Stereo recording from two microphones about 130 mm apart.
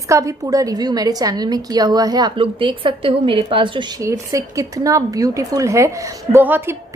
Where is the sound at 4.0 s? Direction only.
25° right (ahead or behind).